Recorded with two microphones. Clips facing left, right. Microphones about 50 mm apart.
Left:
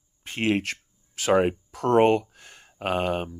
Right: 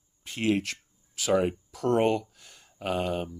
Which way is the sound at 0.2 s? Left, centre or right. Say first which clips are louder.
Left 2 dB; left.